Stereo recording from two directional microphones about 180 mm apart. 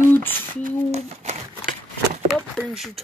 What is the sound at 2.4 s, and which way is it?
Speech, 5° left (ahead or behind).